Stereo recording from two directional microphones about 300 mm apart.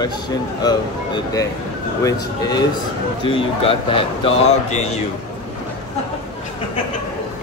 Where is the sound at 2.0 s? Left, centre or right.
Centre.